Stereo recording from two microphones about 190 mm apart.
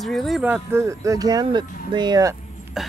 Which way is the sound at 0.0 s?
Centre (ahead or behind).